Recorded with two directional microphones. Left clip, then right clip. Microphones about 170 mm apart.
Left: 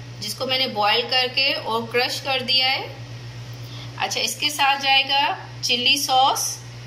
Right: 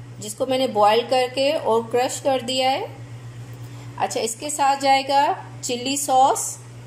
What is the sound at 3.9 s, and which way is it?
Speech, 40° right (ahead or behind).